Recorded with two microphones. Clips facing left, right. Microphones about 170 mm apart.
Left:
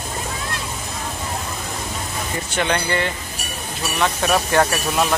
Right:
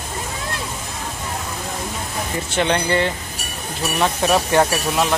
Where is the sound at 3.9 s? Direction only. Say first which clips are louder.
Right 1 dB; 10° right (ahead or behind).